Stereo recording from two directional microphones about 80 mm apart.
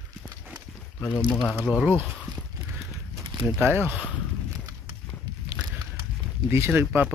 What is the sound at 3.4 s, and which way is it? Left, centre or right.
Speech, right.